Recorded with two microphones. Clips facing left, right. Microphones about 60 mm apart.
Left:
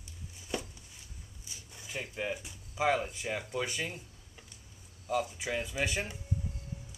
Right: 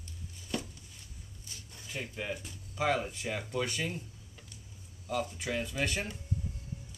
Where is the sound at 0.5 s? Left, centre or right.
Centre.